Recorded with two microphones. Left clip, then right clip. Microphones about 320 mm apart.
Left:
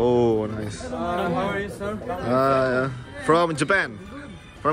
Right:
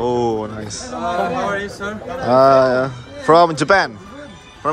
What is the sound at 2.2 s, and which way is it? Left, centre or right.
Speech, centre.